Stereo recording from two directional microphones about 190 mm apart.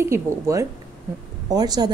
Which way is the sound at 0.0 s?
15° right (ahead or behind).